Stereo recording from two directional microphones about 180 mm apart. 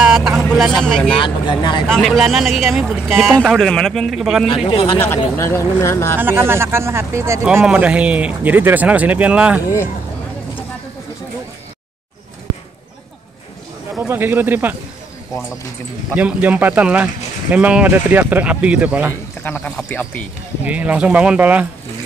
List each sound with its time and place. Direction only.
0.0 s vehicle: 5° right (ahead or behind)
1.2 s speech: 25° left (ahead or behind)
1.9 s speech: centre (ahead or behind)
4.6 s speech: 30° left (ahead or behind)
5.0 s speech: 10° left (ahead or behind)
6.1 s speech: 15° right (ahead or behind)
7.4 s speech: 5° right (ahead or behind)
13.9 s speech: 10° right (ahead or behind)
16.2 s speech: 10° right (ahead or behind)
19.4 s speech: 10° left (ahead or behind)
20.6 s speech: 10° right (ahead or behind)